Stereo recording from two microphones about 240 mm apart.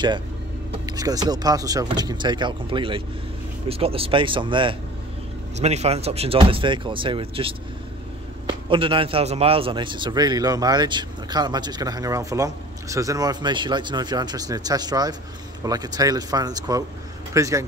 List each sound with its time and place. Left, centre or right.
0.7 s a man's voice: centre